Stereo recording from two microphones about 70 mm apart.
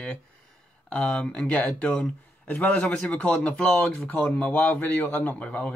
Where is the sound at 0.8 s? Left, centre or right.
Centre.